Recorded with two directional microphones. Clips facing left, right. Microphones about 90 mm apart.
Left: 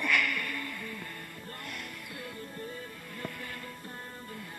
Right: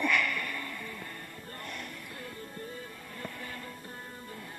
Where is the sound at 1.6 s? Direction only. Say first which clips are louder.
Right 2 dB; 30° right (ahead or behind).